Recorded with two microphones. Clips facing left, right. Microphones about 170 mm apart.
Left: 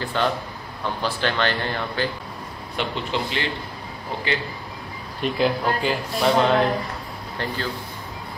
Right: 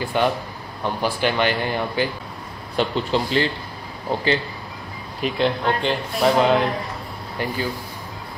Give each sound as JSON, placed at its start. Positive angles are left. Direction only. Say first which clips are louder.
{"t": 0.0, "sound": "speech", "louder": "right 3 dB", "side_deg": -15}
{"t": 2.7, "sound": "speech", "louder": "right 5 dB", "side_deg": -35}
{"t": 5.2, "sound": "speech", "louder": "right 1 dB", "side_deg": 5}
{"t": 7.3, "sound": "speech", "louder": "right 3 dB", "side_deg": -10}